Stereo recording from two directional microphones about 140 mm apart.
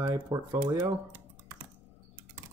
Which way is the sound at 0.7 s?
20° right (ahead or behind).